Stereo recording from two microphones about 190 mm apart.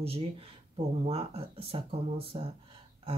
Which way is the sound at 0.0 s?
30° right (ahead or behind).